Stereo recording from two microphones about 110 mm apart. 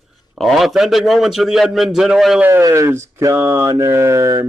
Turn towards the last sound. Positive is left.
turn(degrees=-30)  # may be behind; listen again after turning